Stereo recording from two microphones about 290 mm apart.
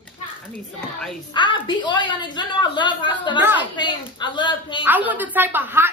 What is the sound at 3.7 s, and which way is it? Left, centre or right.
A woman's voice, centre.